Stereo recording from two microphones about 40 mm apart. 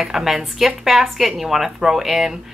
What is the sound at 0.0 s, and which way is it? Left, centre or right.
Speech, centre.